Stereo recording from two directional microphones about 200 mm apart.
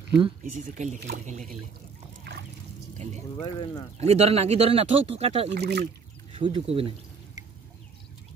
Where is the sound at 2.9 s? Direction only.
35° right (ahead or behind).